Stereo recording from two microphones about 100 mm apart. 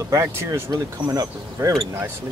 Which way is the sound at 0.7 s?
40° right (ahead or behind).